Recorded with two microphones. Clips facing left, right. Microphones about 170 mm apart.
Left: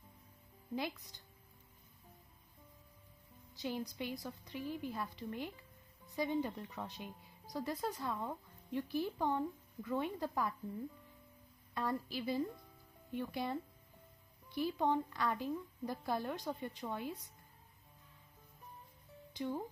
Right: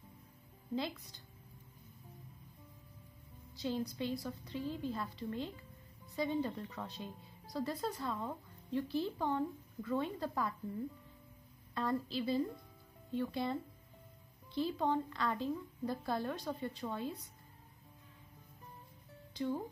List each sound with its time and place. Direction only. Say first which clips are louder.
0.7 s speech: right 2 dB; 15° left (ahead or behind)
3.5 s speech: right 3 dB; 15° left (ahead or behind)
11.7 s speech: right 2 dB; 10° left (ahead or behind)
19.3 s speech: right 2 dB; 15° left (ahead or behind)